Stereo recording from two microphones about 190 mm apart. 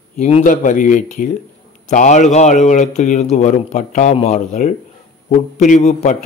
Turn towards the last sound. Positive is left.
turn(degrees=40)  # may be behind; listen again after turning